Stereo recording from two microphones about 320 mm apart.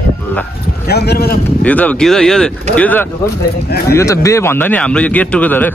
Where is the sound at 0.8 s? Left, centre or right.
Left.